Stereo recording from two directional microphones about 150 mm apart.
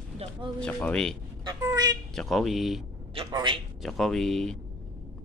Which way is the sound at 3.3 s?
25° right (ahead or behind).